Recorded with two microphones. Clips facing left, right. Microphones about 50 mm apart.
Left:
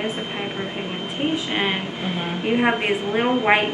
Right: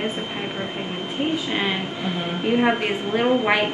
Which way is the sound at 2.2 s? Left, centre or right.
Centre.